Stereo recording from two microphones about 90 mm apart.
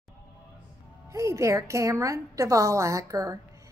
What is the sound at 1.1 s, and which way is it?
A woman's voice, 35° right (ahead or behind).